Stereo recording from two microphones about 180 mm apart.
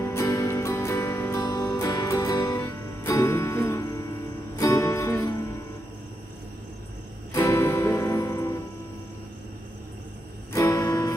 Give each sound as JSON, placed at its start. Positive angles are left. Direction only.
{"t": 0.0, "sound": "music", "side_deg": 15}
{"t": 7.3, "sound": "music", "side_deg": 15}
{"t": 10.5, "sound": "music", "side_deg": 15}